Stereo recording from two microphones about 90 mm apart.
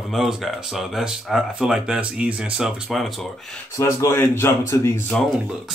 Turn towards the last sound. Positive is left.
turn(degrees=15)  # may be behind; listen again after turning